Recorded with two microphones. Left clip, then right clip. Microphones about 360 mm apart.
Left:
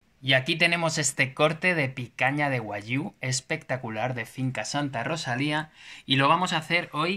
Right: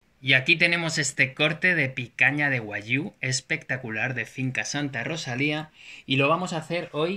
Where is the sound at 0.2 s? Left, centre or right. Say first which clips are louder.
Right 3 dB; centre.